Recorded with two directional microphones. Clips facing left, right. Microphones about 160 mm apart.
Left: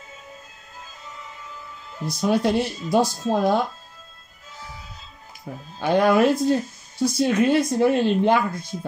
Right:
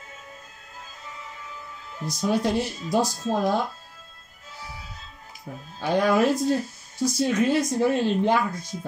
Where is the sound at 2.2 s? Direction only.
60° left (ahead or behind).